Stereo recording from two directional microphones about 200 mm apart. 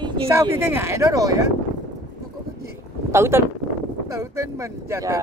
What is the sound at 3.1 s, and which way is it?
Speech, 15° right (ahead or behind).